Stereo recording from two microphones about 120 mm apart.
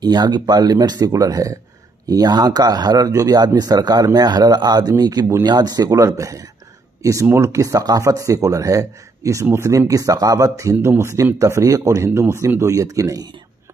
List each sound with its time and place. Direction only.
0.0 s speech: 35° right (ahead or behind)